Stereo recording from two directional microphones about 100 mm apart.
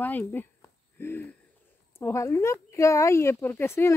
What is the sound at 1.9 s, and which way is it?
Speech, 30° left (ahead or behind).